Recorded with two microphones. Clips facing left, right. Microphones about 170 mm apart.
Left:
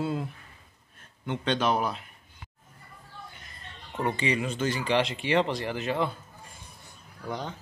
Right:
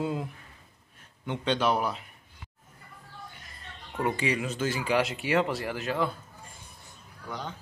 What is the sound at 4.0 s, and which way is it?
Speech, 5° right (ahead or behind).